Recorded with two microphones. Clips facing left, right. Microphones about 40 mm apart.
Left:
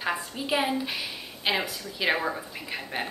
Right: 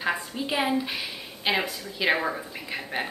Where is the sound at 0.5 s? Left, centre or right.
Centre.